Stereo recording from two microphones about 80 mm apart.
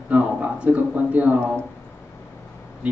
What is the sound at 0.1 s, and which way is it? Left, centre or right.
Speech, centre.